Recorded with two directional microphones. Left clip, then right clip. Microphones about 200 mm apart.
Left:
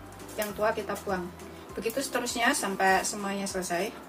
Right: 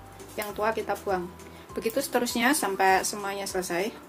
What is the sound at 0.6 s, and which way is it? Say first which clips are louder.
Speech: right 2 dB; 50° right (ahead or behind).